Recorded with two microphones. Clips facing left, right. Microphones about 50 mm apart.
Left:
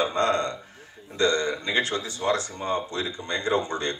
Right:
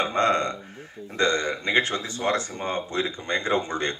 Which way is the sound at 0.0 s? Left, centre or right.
Right.